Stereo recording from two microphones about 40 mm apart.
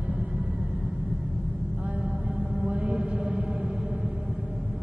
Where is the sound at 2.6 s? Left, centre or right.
Right.